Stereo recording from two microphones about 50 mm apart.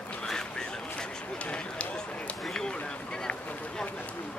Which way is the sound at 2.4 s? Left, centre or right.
Centre.